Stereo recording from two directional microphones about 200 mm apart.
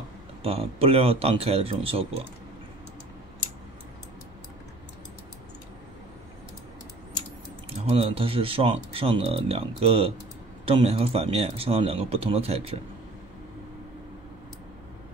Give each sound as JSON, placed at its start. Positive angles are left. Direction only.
{"t": 0.4, "sound": "speech", "side_deg": -30}
{"t": 7.9, "sound": "speech", "side_deg": -30}